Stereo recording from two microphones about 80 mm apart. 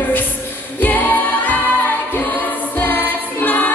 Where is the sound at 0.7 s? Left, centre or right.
Left.